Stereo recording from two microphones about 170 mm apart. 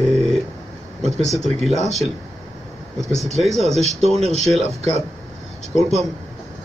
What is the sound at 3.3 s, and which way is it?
Speech, centre (ahead or behind).